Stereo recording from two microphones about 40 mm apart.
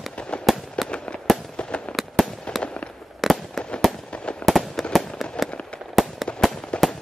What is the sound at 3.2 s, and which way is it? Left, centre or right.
Fireworks, centre.